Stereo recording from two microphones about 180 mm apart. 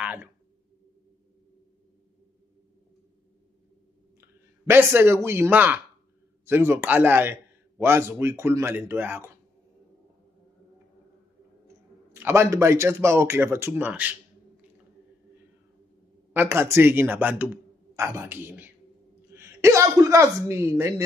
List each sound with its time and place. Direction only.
0.0 s a sound: 10° right (ahead or behind)
4.6 s speech: 10° right (ahead or behind)
12.1 s speech: 15° right (ahead or behind)
16.3 s speech: 15° right (ahead or behind)